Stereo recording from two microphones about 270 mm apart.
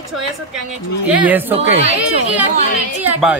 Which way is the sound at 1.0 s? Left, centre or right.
Centre.